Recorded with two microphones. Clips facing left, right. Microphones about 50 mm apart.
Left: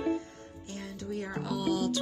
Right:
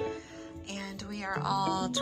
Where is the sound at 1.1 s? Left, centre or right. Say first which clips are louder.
Right 3 dB; right.